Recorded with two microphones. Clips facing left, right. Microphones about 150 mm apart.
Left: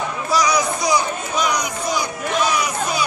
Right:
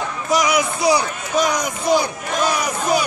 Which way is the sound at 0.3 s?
25° right (ahead or behind).